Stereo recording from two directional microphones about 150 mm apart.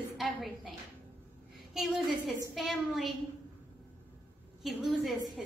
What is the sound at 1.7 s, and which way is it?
A woman's voice, centre (ahead or behind).